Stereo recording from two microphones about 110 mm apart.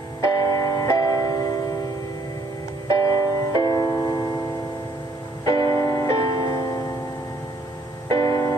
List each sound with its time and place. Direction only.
0.2 s music: 35° left (ahead or behind)
2.9 s music: 35° left (ahead or behind)
5.6 s music: 45° right (ahead or behind)
5.9 s music: 35° left (ahead or behind)
8.2 s music: 35° left (ahead or behind)